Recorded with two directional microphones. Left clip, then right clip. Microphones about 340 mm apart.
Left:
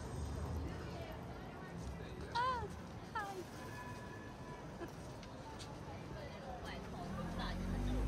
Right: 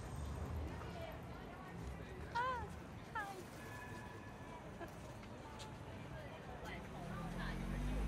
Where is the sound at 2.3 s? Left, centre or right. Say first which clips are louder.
Left 3 dB; centre.